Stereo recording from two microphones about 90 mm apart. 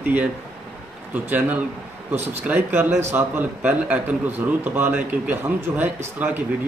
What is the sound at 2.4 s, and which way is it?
A man's voice, 20° right (ahead or behind).